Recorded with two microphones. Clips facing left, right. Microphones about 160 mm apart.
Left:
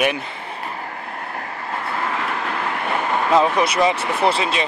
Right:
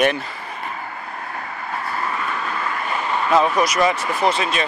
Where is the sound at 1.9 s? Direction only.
80° left; by 3.1 s 55° left (ahead or behind).